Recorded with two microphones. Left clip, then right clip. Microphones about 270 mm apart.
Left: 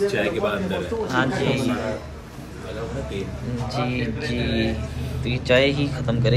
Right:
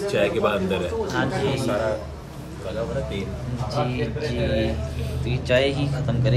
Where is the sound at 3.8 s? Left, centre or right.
Centre.